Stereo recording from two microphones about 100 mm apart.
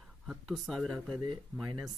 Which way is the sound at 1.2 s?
50° right (ahead or behind).